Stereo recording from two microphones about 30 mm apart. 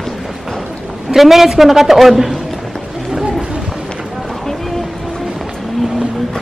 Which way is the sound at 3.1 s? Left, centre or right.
Centre.